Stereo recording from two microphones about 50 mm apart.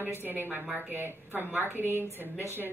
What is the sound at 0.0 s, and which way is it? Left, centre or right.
A woman's voice, right.